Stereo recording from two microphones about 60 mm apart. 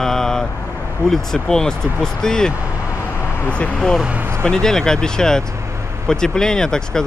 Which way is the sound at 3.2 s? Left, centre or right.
Left.